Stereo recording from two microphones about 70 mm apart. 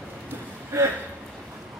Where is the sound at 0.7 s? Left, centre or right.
Right.